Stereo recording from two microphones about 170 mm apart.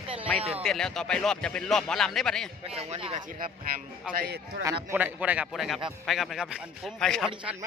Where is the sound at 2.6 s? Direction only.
35° right (ahead or behind).